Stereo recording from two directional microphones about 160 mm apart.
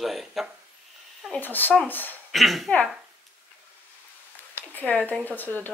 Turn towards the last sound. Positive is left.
turn(degrees=10)  # may be behind; listen again after turning